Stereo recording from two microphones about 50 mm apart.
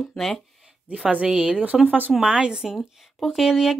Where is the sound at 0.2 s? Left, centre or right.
Centre.